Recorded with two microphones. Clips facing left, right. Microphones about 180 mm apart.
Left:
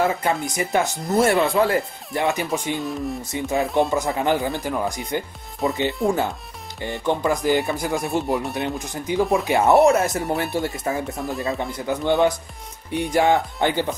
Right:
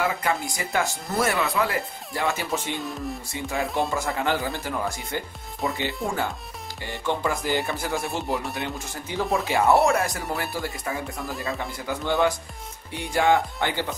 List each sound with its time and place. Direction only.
0.0 s speech: 25° left (ahead or behind)
6.0 s speech: centre (ahead or behind)
6.8 s speech: 20° left (ahead or behind)
11.1 s speech: centre (ahead or behind)
11.4 s speech: 20° left (ahead or behind)